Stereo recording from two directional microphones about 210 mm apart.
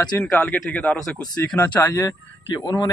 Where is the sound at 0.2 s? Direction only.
5° left (ahead or behind).